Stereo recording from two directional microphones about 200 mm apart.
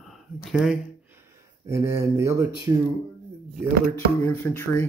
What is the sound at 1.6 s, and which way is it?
Speech, 15° right (ahead or behind).